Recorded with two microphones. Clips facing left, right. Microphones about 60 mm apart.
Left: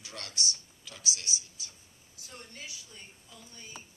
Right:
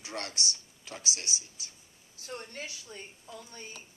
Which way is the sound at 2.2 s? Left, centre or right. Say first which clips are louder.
Right 6 dB; right.